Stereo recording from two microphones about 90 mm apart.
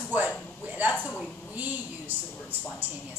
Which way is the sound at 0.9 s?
15° left (ahead or behind).